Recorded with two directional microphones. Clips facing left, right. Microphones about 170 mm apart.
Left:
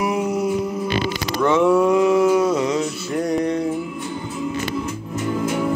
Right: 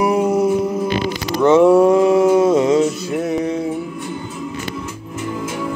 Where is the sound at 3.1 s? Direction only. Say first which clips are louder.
Right 1 dB; 5° right (ahead or behind).